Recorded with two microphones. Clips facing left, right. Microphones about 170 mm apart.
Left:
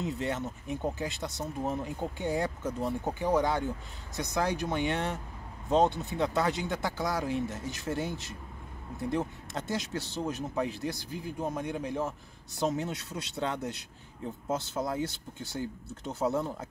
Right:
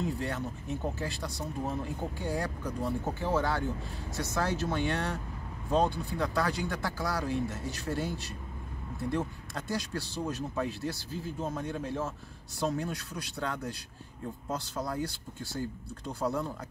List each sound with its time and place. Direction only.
0.0 s speech: 20° left (ahead or behind)